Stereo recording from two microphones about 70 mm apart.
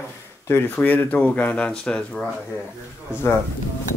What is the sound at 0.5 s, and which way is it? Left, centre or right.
Speech, left.